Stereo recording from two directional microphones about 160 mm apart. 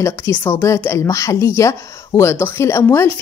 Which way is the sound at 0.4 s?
15° left (ahead or behind).